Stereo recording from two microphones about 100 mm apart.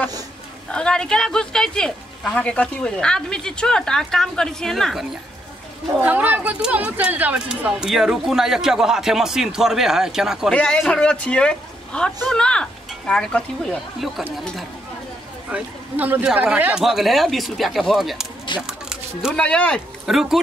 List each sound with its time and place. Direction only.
0.7 s speech: 10° left (ahead or behind)
5.9 s speech: 15° right (ahead or behind)
10.5 s speech: 10° left (ahead or behind)
15.5 s speech: 15° right (ahead or behind); by 18.2 s centre (ahead or behind)
18.7 s a sound: 5° right (ahead or behind)
19.3 s speech: 10° left (ahead or behind)
20.1 s speech: 5° right (ahead or behind)